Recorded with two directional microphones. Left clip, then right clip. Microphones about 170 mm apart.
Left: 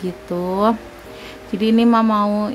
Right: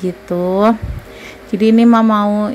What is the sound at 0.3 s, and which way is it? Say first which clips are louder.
A woman's voice: right 5 dB; 15° right (ahead or behind).